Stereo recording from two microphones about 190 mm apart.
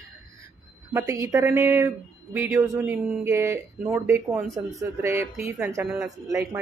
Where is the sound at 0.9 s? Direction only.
15° right (ahead or behind).